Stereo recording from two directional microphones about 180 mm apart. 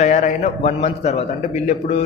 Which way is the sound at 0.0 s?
40° left (ahead or behind).